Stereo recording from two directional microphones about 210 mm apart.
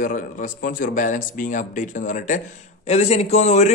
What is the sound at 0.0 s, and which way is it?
A man's voice, 40° left (ahead or behind).